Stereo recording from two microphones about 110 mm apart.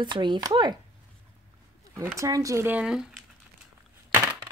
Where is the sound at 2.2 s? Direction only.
30° right (ahead or behind).